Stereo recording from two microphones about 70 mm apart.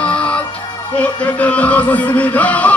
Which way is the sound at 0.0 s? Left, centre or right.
Centre.